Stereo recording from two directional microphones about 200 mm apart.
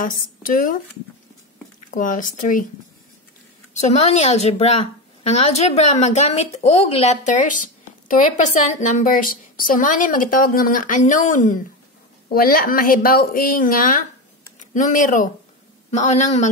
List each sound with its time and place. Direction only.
0.0 s a woman's voice: 45° left (ahead or behind)
1.9 s a woman's voice: 40° left (ahead or behind)
3.8 s a woman's voice: 35° left (ahead or behind)